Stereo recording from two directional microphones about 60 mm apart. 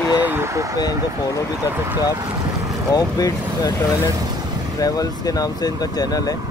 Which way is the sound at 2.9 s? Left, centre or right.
Left.